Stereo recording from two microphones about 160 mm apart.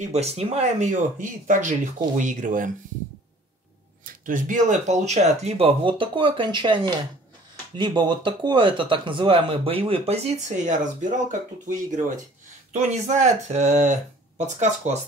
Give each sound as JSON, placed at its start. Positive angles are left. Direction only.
{"t": 0.0, "sound": "speech", "side_deg": -40}
{"t": 4.0, "sound": "speech", "side_deg": -55}
{"t": 12.7, "sound": "speech", "side_deg": -45}